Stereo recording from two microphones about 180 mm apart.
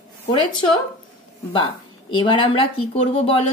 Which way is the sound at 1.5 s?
25° left (ahead or behind).